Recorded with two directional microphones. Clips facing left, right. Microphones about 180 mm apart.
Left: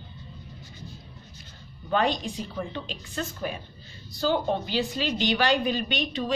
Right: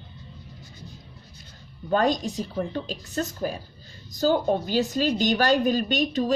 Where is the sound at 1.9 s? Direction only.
40° right (ahead or behind).